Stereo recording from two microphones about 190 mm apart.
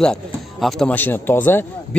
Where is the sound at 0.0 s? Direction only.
5° left (ahead or behind).